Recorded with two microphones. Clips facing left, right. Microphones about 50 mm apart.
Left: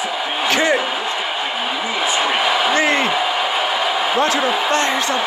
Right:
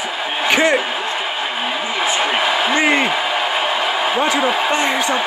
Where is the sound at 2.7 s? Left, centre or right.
Right.